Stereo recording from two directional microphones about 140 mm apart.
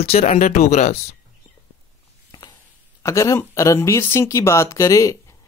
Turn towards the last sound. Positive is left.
turn(degrees=25)  # may be behind; listen again after turning